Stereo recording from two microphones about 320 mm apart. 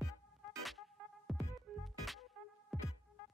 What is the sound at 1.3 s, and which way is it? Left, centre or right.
Music, centre.